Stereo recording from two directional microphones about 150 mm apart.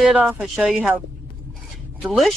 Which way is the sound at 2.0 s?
5° right (ahead or behind).